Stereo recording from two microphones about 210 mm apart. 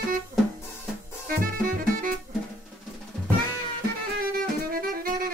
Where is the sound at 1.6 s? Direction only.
40° right (ahead or behind).